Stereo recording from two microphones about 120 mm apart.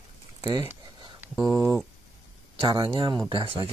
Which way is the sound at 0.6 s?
20° right (ahead or behind).